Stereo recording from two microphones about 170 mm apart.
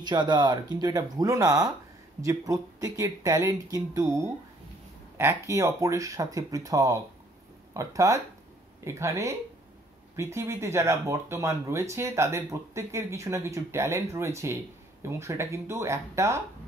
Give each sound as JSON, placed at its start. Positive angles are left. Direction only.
{"t": 0.0, "sound": "speech", "side_deg": -25}